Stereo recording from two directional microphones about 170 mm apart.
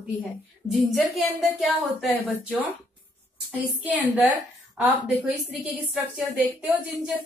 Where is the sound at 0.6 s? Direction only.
Centre (ahead or behind).